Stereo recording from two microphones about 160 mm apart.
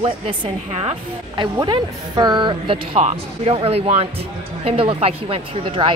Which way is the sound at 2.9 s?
40° right (ahead or behind).